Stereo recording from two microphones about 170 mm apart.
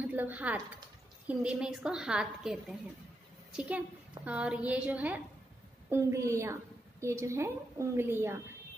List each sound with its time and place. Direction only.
0.0 s a woman's voice: 10° right (ahead or behind)